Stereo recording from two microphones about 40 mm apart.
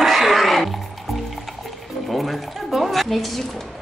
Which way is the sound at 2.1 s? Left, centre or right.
Centre.